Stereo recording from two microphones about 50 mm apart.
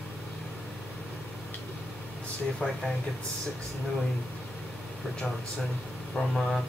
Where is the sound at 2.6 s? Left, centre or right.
Left.